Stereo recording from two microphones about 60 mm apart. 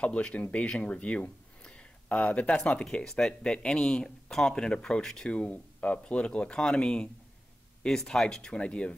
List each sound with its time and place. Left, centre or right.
0.0 s speech: left
2.5 s speech: centre
8.5 s speech: centre